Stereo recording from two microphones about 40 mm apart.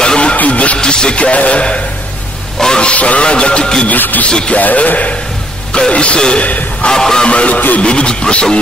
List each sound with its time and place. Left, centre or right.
0.0 s music: left
0.7 s music: left
2.6 s a sound: centre
2.9 s music: left
3.8 s speech: left
4.3 s music: left
4.6 s a man's voice: left
5.7 s music: left
6.4 s speech: left
6.9 s a sound: centre
7.2 s a man's voice: left
7.8 s music: left